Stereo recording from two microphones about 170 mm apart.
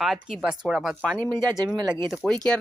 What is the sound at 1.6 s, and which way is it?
Speech, 25° right (ahead or behind).